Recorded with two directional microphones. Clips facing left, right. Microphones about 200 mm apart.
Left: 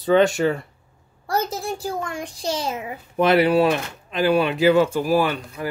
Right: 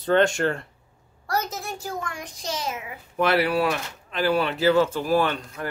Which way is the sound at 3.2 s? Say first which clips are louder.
Left 5 dB; 20° left (ahead or behind).